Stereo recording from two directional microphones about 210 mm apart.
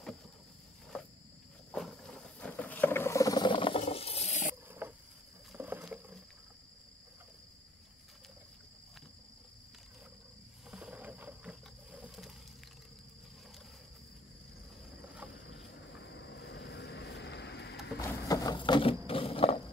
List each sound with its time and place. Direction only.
0.9 s cricket: 5° left (ahead or behind)
1.7 s wild animals: centre (ahead or behind); by 3.8 s 25° left (ahead or behind)
3.8 s a sound: 30° left (ahead or behind)
4.6 s cricket: 10° right (ahead or behind)
5.5 s rowboat: 10° right (ahead or behind)
10.7 s a sound: 5° right (ahead or behind)
15.5 s vehicle: 55° left (ahead or behind)
18.0 s wild animals: 15° left (ahead or behind)